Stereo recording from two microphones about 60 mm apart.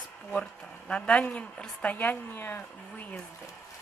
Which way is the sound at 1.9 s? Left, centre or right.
Left.